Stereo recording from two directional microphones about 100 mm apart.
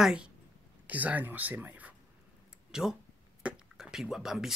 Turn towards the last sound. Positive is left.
turn(degrees=-5)  # may be behind; listen again after turning